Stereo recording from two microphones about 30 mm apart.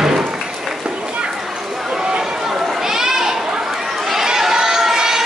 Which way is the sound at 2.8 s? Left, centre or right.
Centre.